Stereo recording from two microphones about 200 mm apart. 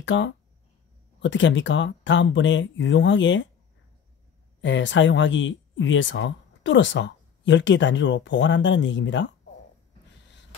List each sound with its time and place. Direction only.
0.0 s speech: 65° left (ahead or behind)
4.6 s speech: 65° left (ahead or behind)